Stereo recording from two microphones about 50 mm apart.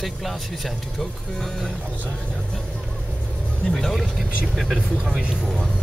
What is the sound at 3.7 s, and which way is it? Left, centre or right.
Speech, centre.